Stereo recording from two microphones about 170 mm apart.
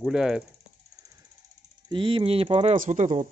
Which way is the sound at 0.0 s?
5° right (ahead or behind).